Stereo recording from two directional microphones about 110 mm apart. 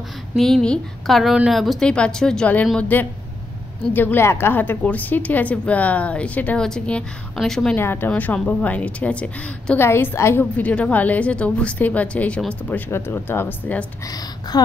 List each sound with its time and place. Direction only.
0.4 s a woman's voice: 5° left (ahead or behind)
7.7 s a woman's voice: 20° left (ahead or behind)
9.8 s a woman's voice: 20° left (ahead or behind)
10.6 s a woman's voice: 10° left (ahead or behind)
14.0 s a woman's voice: 35° left (ahead or behind)